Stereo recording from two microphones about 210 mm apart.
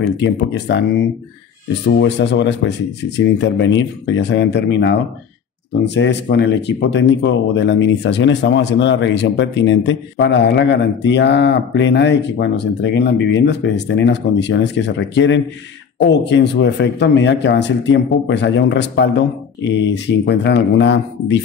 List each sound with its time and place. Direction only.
0.0 s speech: 55° left (ahead or behind)
2.0 s speech: 55° left (ahead or behind)